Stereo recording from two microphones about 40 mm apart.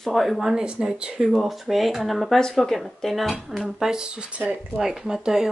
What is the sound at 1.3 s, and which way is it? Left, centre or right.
A woman's voice, centre.